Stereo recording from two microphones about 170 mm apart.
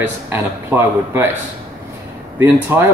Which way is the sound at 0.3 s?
15° right (ahead or behind).